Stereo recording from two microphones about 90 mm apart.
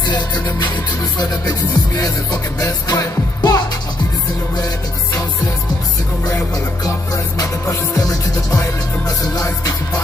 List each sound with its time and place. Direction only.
0.1 s music: 50° left (ahead or behind)
6.2 s music: 40° left (ahead or behind)